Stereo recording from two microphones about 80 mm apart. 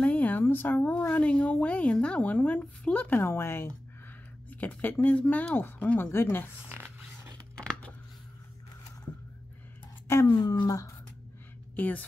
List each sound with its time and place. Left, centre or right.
0.0 s speech: centre
4.5 s speech: centre
7.5 s a sound: centre
10.2 s speech: left
11.7 s a woman's voice: left